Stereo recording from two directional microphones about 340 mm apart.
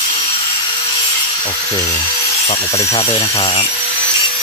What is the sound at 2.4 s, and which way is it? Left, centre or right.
Wood, centre.